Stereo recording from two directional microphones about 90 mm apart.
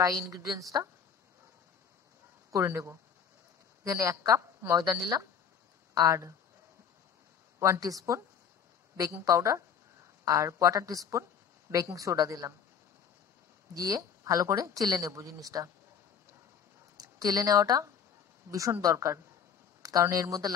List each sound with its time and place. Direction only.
0.0 s speech: 40° right (ahead or behind)
2.5 s speech: 35° right (ahead or behind)
4.7 s speech: 45° right (ahead or behind)
7.5 s speech: 35° right (ahead or behind)
13.7 s speech: 40° right (ahead or behind)
16.9 s speech: 45° right (ahead or behind)